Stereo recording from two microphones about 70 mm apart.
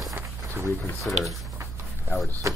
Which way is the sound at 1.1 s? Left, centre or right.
Left.